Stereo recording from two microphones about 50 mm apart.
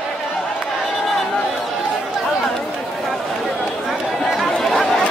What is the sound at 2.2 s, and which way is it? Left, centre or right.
Chatter, centre.